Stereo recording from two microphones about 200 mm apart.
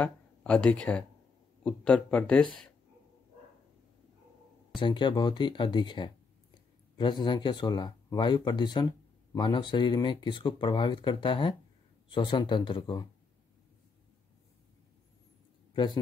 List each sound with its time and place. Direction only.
0.0 s speech: 5° left (ahead or behind)
4.7 s speech: 25° left (ahead or behind)
15.7 s speech: 20° left (ahead or behind)